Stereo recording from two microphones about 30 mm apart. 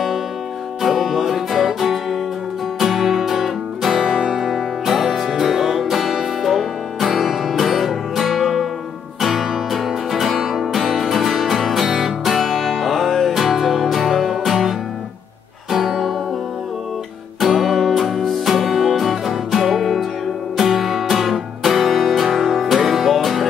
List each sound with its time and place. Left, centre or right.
0.8 s music: centre
4.0 s music: right
4.4 s music: centre
11.8 s music: centre
12.3 s music: centre
14.5 s guitar: centre
15.7 s music: centre
17.4 s music: centre